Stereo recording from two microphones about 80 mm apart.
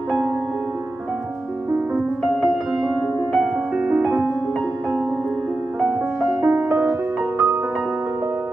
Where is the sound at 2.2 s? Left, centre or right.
Centre.